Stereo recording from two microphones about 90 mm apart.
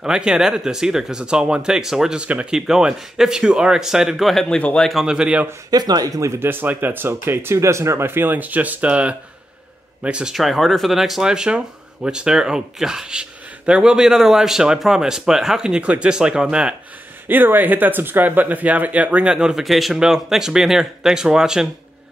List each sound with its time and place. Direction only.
0.0 s speech: 10° right (ahead or behind)
4.6 s speech: 15° left (ahead or behind)
4.8 s speech: 5° right (ahead or behind)
5.7 s speech: 50° right (ahead or behind)
6.4 s speech: 20° right (ahead or behind)
17.3 s speech: 20° right (ahead or behind)